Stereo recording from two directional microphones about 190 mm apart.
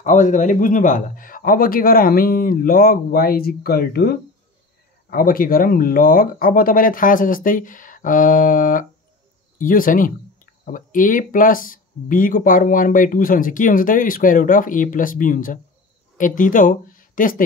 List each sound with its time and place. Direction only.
0.0 s speech: 40° left (ahead or behind)